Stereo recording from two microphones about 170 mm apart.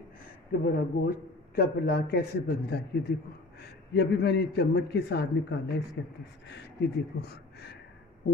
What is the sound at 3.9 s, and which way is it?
A man's voice, 70° left (ahead or behind).